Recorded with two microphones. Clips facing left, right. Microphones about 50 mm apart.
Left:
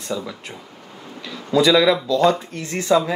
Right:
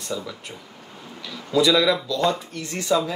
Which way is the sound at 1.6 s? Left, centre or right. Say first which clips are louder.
Left 5 dB; left.